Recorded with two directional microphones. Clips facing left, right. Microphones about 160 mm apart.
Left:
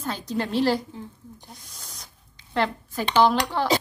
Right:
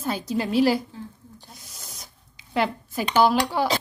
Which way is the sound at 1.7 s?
10° right (ahead or behind).